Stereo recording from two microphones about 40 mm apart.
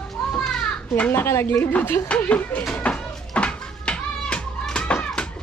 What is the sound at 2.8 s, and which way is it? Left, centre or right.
Music, left.